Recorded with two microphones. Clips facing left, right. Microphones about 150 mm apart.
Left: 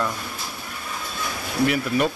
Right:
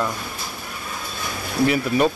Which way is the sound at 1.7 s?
25° right (ahead or behind).